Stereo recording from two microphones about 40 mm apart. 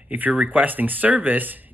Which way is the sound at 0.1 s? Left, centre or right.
Right.